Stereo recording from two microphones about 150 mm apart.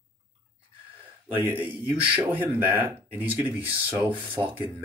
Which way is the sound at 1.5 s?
10° right (ahead or behind).